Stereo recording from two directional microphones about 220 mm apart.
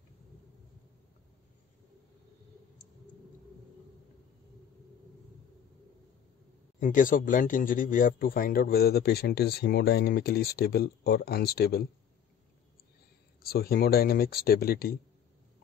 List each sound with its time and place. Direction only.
6.8 s speech: 35° left (ahead or behind)
13.4 s speech: 45° left (ahead or behind)